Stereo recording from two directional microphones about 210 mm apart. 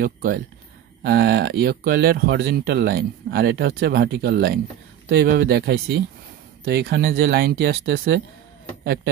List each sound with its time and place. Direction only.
0.0 s speech: 45° right (ahead or behind)